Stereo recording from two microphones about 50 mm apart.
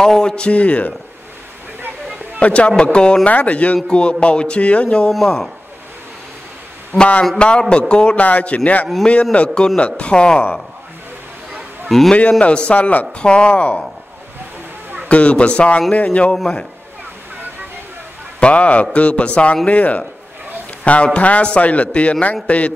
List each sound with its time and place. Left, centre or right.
0.0 s music: centre
2.4 s music: left
5.1 s a man's voice: centre
7.0 s music: left
12.1 s music: left
15.0 s music: left
18.4 s music: left